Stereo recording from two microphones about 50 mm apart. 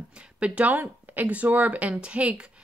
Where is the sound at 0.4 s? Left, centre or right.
Right.